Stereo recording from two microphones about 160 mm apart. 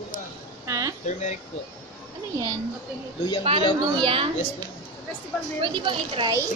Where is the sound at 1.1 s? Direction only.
50° left (ahead or behind).